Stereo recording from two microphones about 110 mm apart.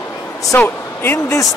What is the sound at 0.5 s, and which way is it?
Speech, 20° left (ahead or behind).